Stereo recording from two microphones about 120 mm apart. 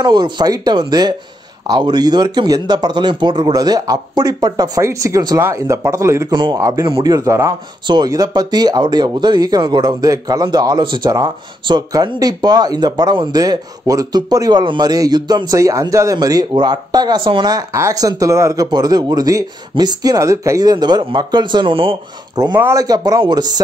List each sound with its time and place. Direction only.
0.0 s speech: 35° right (ahead or behind)
6.3 s speech: 40° right (ahead or behind)
6.6 s speech: 25° right (ahead or behind)